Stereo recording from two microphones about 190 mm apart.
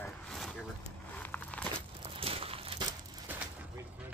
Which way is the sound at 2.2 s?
30° right (ahead or behind).